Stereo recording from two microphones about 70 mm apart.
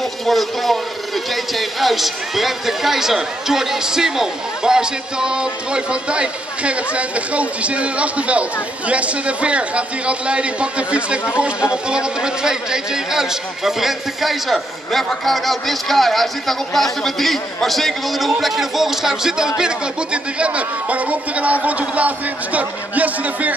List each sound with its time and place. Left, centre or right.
0.0 s a man's voice: centre; by 23.5 s right